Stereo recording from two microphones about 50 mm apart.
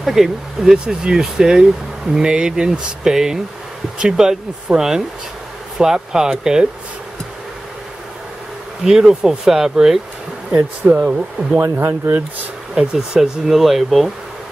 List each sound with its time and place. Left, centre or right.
0.0 s speech: centre
8.8 s speech: centre
10.9 s speech: right
12.1 s speech: right
12.7 s speech: centre